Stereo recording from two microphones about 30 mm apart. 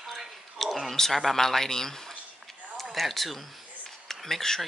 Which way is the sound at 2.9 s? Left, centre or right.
Centre.